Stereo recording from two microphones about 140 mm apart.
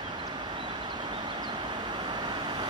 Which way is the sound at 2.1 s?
30° right (ahead or behind).